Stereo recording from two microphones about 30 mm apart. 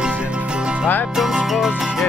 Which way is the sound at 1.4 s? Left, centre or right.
Centre.